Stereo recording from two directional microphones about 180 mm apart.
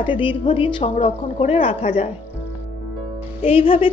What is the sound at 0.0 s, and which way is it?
A woman's voice, 30° left (ahead or behind).